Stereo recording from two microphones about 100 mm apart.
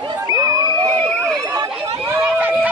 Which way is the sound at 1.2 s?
30° right (ahead or behind).